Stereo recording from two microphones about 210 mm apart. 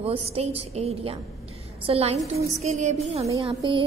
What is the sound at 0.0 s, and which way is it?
A woman's voice, 30° right (ahead or behind).